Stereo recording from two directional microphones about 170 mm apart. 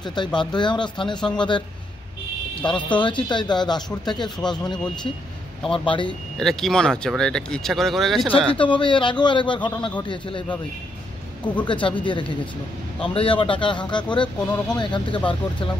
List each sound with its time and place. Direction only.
0.0 s a man's voice: 25° left (ahead or behind)
2.6 s a man's voice: 30° left (ahead or behind)
5.7 s a man's voice: 30° left (ahead or behind)
6.3 s speech: centre (ahead or behind)
8.5 s a man's voice: 30° left (ahead or behind)
11.6 s a man's voice: 30° left (ahead or behind)